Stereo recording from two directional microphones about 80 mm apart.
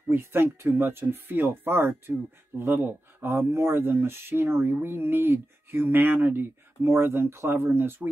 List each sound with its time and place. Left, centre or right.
0.1 s speech: right